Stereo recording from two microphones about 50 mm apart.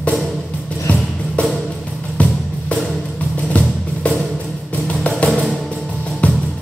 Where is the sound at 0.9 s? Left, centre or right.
Left.